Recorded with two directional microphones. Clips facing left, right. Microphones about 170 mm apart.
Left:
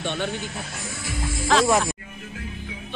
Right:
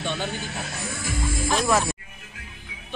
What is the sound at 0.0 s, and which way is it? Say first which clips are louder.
Speech: left 1 dB; 75° left (ahead or behind).